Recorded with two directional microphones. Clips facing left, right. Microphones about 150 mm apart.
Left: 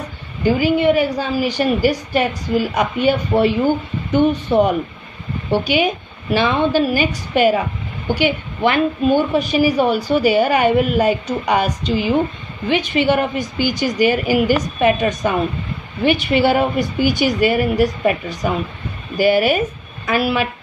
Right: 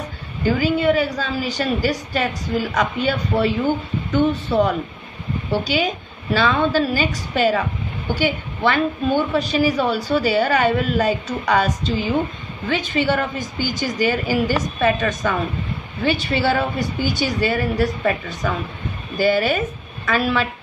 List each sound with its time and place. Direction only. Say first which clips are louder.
0.4 s a woman's voice: left 3 dB; 15° left (ahead or behind)
3.3 s speech: left 1 dB; 40° left (ahead or behind)
4.3 s a woman's voice: left 3 dB; 15° left (ahead or behind)
6.3 s a woman's voice: left 2 dB; 15° left (ahead or behind)
19.1 s a woman's voice: left 3 dB; 10° left (ahead or behind)